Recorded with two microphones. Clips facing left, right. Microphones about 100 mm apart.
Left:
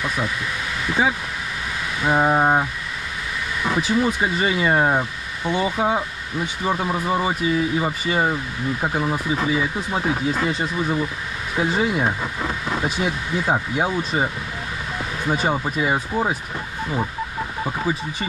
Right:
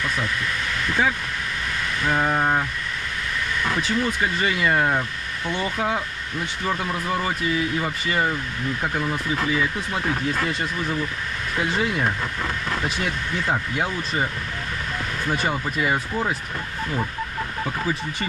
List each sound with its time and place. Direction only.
0.0 s speech: 10° left (ahead or behind)
2.0 s a sound: 15° left (ahead or behind)
2.2 s speech: 25° left (ahead or behind)
3.6 s speech: 10° left (ahead or behind)
5.4 s speech: 10° left (ahead or behind)
13.5 s speech: 20° left (ahead or behind)
15.8 s speech: 15° left (ahead or behind)